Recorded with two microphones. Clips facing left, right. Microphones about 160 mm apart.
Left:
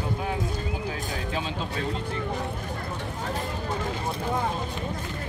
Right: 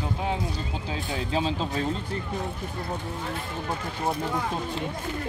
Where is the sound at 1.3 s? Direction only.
30° right (ahead or behind).